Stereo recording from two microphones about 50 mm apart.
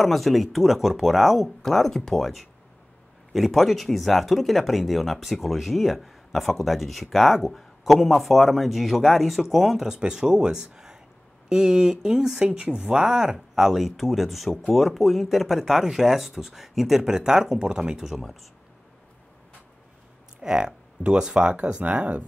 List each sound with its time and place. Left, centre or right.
0.0 s speech: centre
20.3 s speech: centre